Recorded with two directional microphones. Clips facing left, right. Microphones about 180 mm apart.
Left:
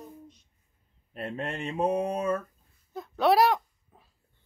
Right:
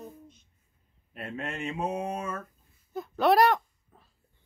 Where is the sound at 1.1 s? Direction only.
30° left (ahead or behind).